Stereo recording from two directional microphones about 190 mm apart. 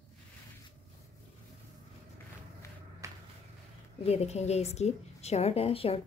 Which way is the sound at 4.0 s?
35° left (ahead or behind).